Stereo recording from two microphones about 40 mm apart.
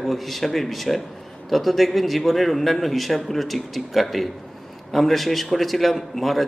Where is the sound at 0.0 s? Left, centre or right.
Centre.